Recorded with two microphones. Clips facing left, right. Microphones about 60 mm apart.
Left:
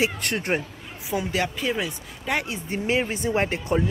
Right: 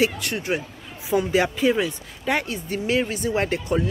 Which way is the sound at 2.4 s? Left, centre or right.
Centre.